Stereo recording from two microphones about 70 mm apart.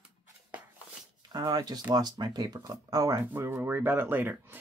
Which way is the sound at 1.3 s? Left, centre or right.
Right.